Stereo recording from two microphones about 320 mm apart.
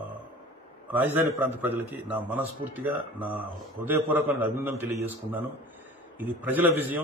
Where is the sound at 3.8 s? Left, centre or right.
Centre.